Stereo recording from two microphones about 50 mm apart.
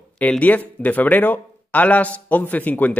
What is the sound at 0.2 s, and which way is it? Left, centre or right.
Speech, left.